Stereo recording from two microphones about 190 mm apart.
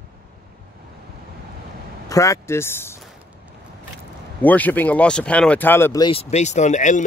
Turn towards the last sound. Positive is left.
turn(degrees=40)  # may be behind; listen again after turning